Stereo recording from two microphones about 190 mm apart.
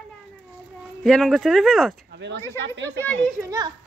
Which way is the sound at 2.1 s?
70° right (ahead or behind).